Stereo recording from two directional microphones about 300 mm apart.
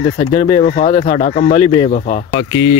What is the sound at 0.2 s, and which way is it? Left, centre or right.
Speech, centre.